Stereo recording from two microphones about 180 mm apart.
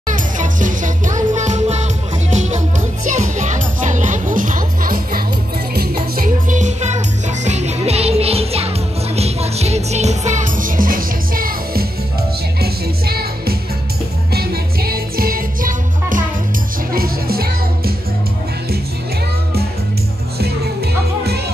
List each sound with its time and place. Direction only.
0.1 s music: 45° right (ahead or behind)